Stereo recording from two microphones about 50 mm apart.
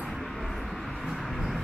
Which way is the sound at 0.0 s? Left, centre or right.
Centre.